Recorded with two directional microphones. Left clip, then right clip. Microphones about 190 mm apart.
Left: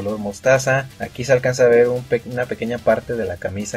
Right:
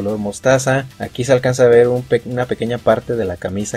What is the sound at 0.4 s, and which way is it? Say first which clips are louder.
Speech: right 1 dB; 35° right (ahead or behind).